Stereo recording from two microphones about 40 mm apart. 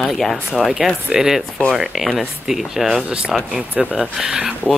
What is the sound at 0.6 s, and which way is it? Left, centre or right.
Speech, centre.